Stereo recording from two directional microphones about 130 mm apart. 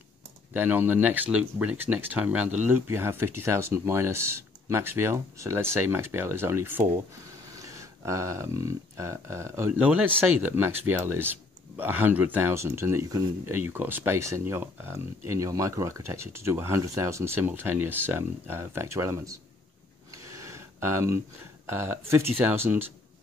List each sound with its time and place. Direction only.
0.5 s speech: 15° right (ahead or behind)
20.3 s a sound: 20° right (ahead or behind)
21.6 s speech: 20° right (ahead or behind)